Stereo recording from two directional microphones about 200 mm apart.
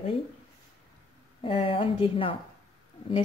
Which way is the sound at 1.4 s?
25° left (ahead or behind).